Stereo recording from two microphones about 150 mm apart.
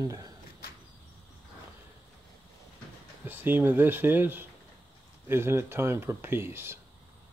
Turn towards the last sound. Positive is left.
turn(degrees=-15)  # may be behind; listen again after turning